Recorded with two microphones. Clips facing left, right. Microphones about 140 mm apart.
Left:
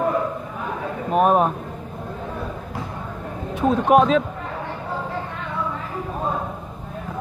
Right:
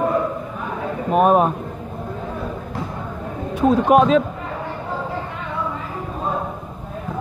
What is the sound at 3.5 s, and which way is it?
Speech, centre (ahead or behind).